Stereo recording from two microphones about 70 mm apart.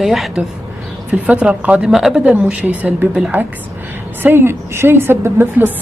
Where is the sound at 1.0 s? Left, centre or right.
Right.